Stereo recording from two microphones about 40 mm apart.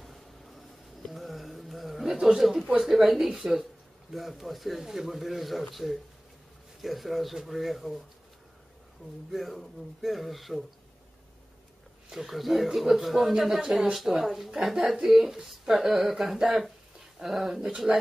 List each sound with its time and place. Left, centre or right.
0.0 s a sound: centre
2.2 s a woman's voice: centre
9.3 s speech: centre
12.1 s a woman's voice: centre
17.9 s speech: right